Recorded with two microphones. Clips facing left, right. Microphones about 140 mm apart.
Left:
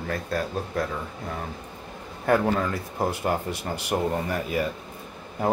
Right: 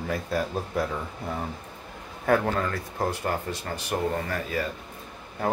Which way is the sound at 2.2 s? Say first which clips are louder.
Left 1 dB; centre (ahead or behind).